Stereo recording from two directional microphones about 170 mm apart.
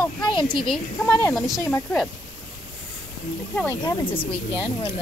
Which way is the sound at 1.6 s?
10° left (ahead or behind).